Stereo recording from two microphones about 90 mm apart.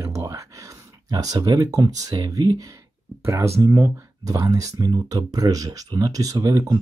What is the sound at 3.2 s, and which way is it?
Speech, 30° right (ahead or behind).